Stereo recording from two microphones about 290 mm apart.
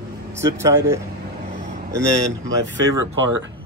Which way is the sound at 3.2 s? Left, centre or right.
Right.